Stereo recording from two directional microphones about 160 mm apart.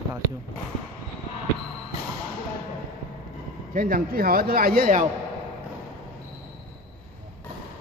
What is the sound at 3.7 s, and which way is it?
A man's voice, 60° right (ahead or behind).